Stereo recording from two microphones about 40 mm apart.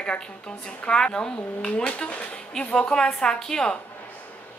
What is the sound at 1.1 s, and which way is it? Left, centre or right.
A woman's voice, left.